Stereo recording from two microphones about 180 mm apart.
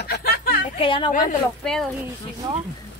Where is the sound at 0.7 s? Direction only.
30° left (ahead or behind).